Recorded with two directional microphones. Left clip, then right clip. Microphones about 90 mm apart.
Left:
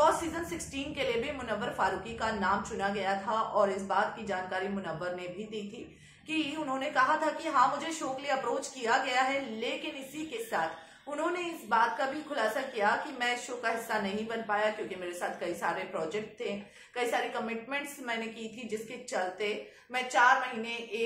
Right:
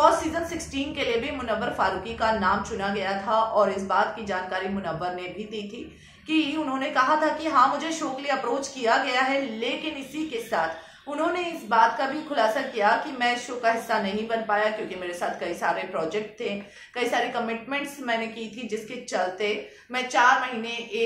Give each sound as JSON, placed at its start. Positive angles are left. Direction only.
{"t": 0.0, "sound": "a woman's voice", "side_deg": -25}
{"t": 6.3, "sound": "a woman's voice", "side_deg": -25}
{"t": 19.4, "sound": "a woman's voice", "side_deg": -25}